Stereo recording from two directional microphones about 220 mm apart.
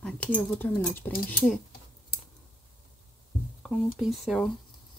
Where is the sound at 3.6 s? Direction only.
Centre (ahead or behind).